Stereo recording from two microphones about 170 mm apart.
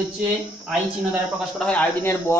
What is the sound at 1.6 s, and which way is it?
Speech, 10° left (ahead or behind).